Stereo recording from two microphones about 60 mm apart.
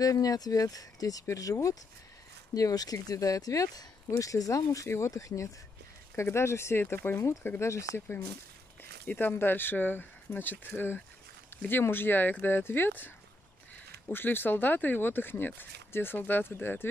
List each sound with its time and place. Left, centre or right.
0.0 s speech: left
1.3 s speech: left
2.5 s speech: left
4.2 s speech: left
4.8 s speech: left
5.1 s speech: left
6.1 s speech: left
7.6 s speech: left
9.0 s speech: left
11.8 s speech: left